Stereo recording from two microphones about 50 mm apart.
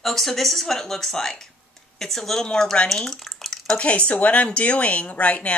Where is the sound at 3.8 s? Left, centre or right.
Left.